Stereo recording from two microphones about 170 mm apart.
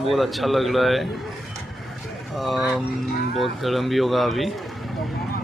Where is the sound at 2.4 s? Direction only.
Centre (ahead or behind).